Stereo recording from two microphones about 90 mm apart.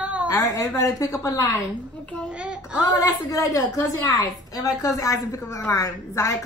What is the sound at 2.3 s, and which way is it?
Speech, 10° right (ahead or behind).